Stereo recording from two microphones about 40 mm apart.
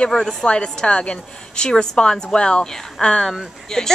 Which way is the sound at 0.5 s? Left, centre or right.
Left.